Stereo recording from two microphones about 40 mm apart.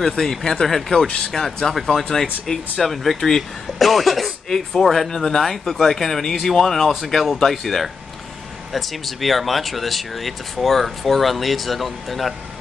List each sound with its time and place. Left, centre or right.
0.0 s speech: centre
1.0 s speech: left
1.3 s speech: centre
4.5 s speech: centre